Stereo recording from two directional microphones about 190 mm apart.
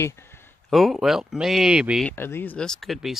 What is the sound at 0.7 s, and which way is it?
Speech, centre (ahead or behind).